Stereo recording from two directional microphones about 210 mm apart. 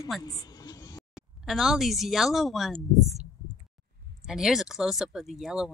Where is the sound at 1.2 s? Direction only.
Centre (ahead or behind).